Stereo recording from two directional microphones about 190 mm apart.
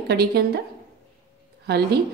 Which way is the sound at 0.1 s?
55° right (ahead or behind).